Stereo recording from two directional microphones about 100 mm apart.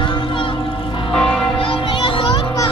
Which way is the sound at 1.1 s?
10° left (ahead or behind).